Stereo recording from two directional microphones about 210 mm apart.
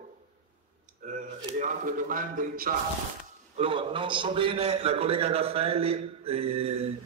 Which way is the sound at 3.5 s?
25° right (ahead or behind).